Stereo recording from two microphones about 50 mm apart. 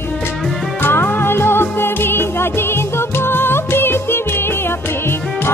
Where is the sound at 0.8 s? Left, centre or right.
Left.